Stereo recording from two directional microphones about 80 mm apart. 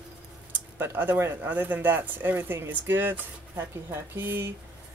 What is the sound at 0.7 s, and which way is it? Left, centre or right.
Speech, right.